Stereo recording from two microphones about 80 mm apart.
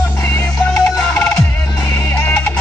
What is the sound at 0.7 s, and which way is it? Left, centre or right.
Music, centre.